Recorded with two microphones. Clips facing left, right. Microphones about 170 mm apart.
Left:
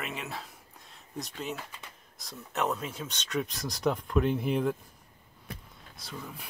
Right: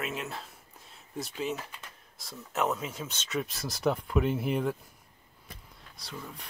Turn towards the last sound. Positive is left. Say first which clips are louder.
# left 1 dB
turn(degrees=0)  # may be behind; listen again after turning